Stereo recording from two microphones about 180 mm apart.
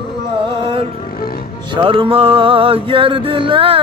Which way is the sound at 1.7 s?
30° right (ahead or behind).